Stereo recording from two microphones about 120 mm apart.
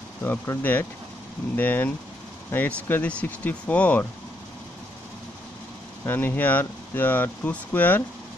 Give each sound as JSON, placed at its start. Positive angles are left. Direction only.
{"t": 0.2, "sound": "speech", "side_deg": 15}
{"t": 6.0, "sound": "speech", "side_deg": 15}